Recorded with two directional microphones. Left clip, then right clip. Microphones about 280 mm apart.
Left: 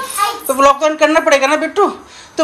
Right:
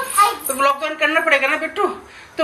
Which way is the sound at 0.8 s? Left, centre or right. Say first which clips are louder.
Left 6 dB; centre.